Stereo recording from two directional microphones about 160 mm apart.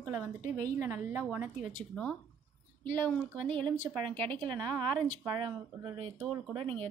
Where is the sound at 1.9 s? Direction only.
5° left (ahead or behind).